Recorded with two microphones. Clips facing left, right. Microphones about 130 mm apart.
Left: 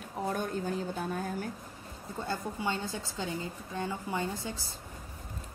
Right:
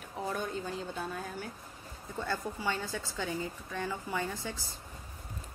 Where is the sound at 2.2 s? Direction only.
25° left (ahead or behind).